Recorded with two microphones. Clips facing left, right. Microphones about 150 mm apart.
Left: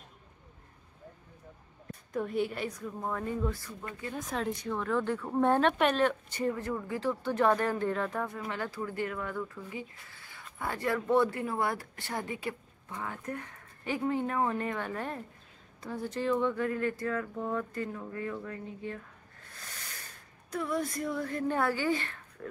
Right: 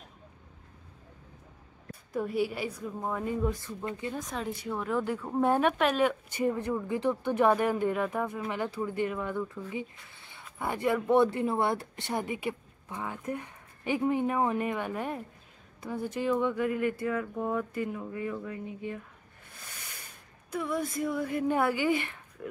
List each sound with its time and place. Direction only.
1.9 s speech: 5° right (ahead or behind); by 4.1 s 20° right (ahead or behind)
4.1 s speech: centre (ahead or behind)
19.6 s a sound: 10° right (ahead or behind)
20.5 s speech: 5° right (ahead or behind)